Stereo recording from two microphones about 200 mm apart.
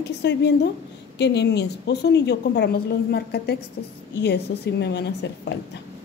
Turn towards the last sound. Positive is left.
turn(degrees=60)  # may be behind; listen again after turning